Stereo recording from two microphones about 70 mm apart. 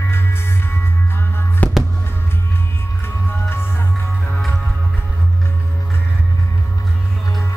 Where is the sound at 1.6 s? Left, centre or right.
Left.